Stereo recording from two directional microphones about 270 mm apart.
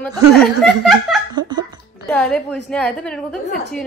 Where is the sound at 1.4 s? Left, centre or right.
Centre.